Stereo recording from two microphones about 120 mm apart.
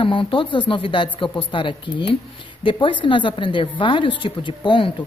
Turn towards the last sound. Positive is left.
turn(degrees=45)  # may be behind; listen again after turning